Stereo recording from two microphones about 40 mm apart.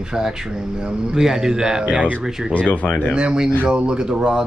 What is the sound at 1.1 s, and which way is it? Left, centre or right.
Speech, centre.